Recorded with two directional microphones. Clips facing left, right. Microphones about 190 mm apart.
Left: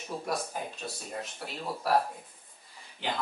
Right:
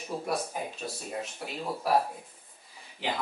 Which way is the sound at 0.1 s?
5° right (ahead or behind).